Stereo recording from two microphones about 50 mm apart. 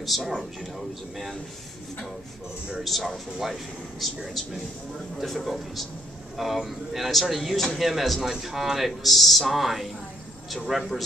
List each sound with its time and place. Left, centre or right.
0.0 s a man's voice: centre
2.8 s a man's voice: centre